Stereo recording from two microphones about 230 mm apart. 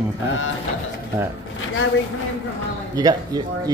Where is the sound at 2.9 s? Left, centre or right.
Centre.